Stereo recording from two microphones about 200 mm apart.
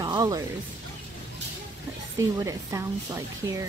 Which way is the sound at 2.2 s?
15° right (ahead or behind).